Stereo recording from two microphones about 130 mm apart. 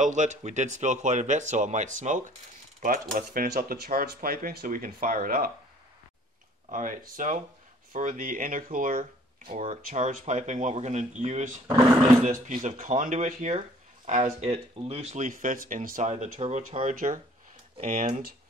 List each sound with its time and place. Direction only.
0.0 s speech: 70° right (ahead or behind)
2.8 s speech: 90° right
6.7 s speech: 90° right
7.2 s speech: 80° right
9.5 s speech: 65° right (ahead or behind)
14.5 s speech: 50° right (ahead or behind); by 18.2 s 70° right (ahead or behind)